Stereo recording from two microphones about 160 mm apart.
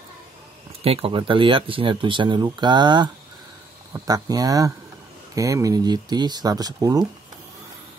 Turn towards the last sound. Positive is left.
turn(degrees=-25)  # may be behind; listen again after turning